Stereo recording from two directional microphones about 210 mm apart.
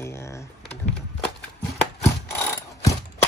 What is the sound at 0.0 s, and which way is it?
Typing, 10° left (ahead or behind).